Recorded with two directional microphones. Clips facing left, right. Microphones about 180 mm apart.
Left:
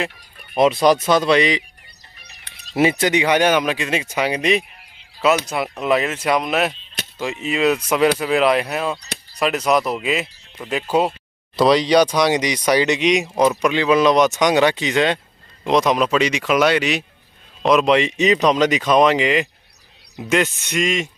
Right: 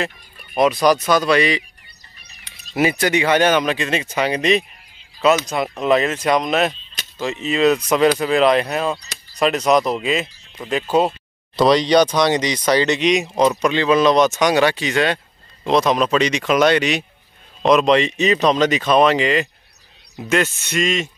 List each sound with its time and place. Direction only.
0.6 s speech: 25° left (ahead or behind)
2.7 s speech: 25° left (ahead or behind)